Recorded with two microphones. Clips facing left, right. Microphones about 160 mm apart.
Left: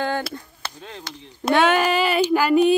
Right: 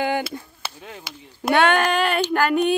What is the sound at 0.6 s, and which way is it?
Speech, 10° right (ahead or behind).